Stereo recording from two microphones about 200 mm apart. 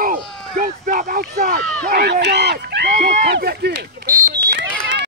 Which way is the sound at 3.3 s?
55° right (ahead or behind).